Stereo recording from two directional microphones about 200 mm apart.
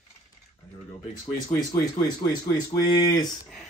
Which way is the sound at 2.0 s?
20° left (ahead or behind).